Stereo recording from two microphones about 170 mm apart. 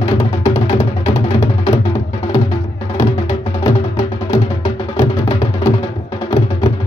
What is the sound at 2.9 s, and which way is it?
Music, 35° left (ahead or behind).